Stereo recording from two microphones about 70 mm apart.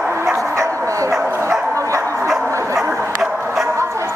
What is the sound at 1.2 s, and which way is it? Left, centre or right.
Bow-wow, right.